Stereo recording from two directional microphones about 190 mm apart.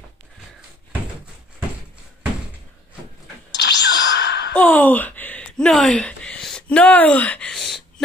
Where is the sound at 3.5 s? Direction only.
65° left (ahead or behind).